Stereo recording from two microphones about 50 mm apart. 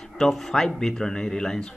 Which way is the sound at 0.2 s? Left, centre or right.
Centre.